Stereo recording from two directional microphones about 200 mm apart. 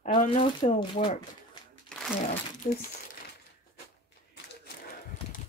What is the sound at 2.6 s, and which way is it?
Speech, 45° left (ahead or behind).